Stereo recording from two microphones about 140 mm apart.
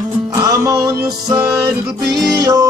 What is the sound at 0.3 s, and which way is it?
Music, 25° right (ahead or behind).